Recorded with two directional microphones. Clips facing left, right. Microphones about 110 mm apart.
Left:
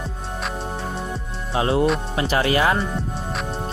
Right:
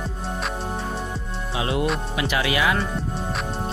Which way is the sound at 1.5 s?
35° left (ahead or behind).